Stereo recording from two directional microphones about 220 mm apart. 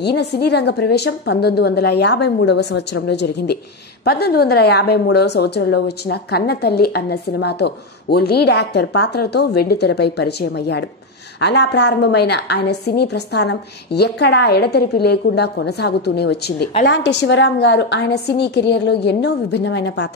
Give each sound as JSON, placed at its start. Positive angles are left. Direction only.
{"t": 0.0, "sound": "a woman's voice", "side_deg": 50}